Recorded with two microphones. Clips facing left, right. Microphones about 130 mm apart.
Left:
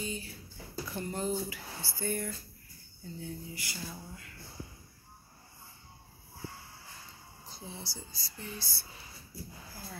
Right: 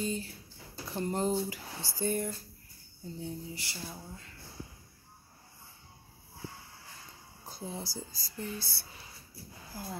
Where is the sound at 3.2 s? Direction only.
30° right (ahead or behind).